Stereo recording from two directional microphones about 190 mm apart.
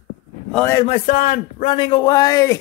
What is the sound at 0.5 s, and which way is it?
Speech, 10° left (ahead or behind).